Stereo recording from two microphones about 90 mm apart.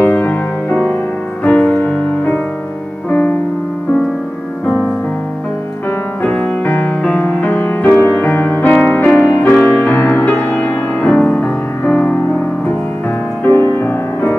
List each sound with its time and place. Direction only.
0.0 s music: 20° left (ahead or behind)
6.2 s music: 15° left (ahead or behind)
13.5 s music: 25° left (ahead or behind)